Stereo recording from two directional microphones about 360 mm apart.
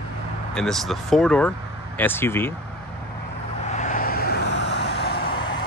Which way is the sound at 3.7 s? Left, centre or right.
Left.